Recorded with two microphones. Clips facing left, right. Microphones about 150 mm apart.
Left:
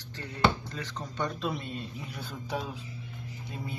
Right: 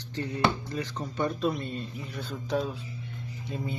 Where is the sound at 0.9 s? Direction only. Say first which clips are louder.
Right 2 dB; 5° right (ahead or behind).